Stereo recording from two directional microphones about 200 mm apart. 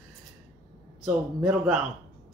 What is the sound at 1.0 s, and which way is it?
Speech, 5° right (ahead or behind).